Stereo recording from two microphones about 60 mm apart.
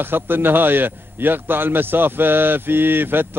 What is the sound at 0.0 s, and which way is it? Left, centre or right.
A man's voice, right.